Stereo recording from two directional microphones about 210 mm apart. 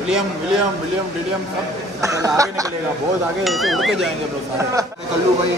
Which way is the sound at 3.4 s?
Centre (ahead or behind).